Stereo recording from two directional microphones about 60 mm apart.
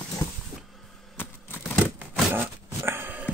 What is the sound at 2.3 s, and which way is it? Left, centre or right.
Dog, right.